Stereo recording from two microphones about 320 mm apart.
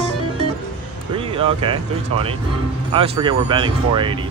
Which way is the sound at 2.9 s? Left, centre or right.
Centre.